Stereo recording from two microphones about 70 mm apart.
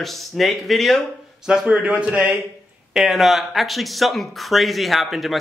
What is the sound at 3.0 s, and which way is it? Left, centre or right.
Speech, centre.